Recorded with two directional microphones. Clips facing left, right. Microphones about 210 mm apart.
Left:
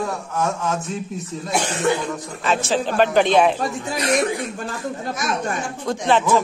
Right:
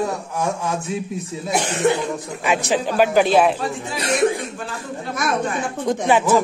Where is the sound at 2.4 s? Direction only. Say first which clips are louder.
Right 1 dB; 15° right (ahead or behind).